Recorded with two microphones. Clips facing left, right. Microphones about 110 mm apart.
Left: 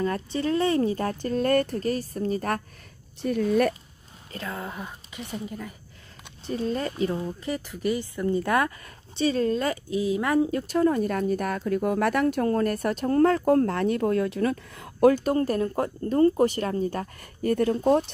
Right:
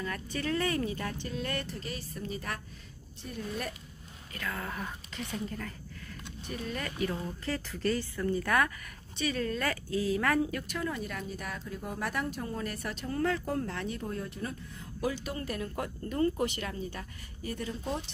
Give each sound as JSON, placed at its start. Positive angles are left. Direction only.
{"t": 0.0, "sound": "speech", "side_deg": 30}
{"t": 3.2, "sound": "speech", "side_deg": 80}
{"t": 4.3, "sound": "speech", "side_deg": 25}
{"t": 6.4, "sound": "speech", "side_deg": 30}